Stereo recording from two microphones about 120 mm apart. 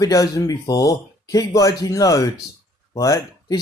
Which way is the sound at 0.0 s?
30° left (ahead or behind).